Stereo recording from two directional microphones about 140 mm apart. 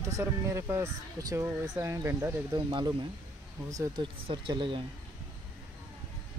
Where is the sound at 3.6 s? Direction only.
25° right (ahead or behind).